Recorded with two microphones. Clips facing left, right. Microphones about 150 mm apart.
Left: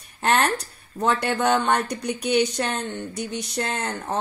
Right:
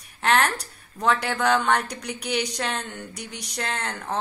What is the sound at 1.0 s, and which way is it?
Speech, 25° left (ahead or behind).